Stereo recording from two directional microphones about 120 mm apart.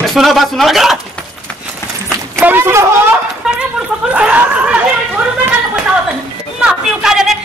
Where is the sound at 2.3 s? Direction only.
20° right (ahead or behind).